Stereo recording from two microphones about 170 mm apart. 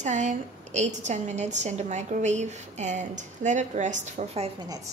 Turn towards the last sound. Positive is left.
turn(degrees=-40)  # may be behind; listen again after turning